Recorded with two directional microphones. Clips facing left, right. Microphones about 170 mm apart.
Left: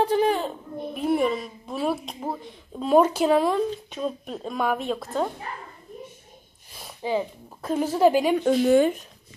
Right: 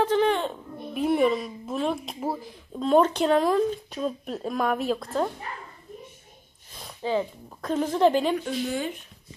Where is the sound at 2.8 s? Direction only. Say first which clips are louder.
Left 1 dB; 10° left (ahead or behind).